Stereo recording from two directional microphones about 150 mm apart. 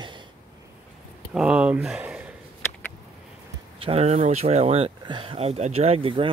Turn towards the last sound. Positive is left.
turn(degrees=-35)  # may be behind; listen again after turning